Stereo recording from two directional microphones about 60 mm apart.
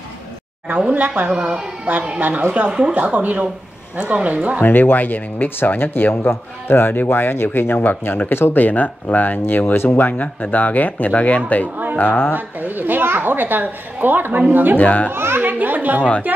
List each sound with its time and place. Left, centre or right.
0.9 s speech: right
1.3 s speech: centre
1.9 s speech: right
4.6 s speech: left
12.4 s speech: right
14.8 s a child's voice: left
15.1 s speech: right